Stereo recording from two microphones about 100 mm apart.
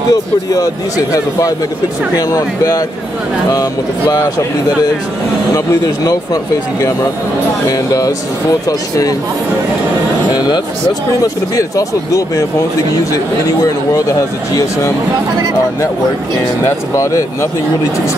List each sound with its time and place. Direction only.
0.1 s speech: 40° left (ahead or behind)
6.0 s speech: 40° left (ahead or behind)
10.3 s speech: 40° left (ahead or behind)
16.9 s speech: 30° left (ahead or behind)